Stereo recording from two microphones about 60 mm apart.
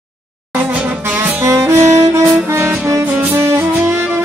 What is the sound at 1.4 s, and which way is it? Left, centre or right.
Music, right.